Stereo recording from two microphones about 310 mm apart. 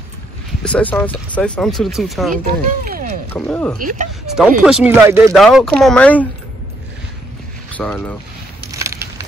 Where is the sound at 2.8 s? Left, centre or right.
Right.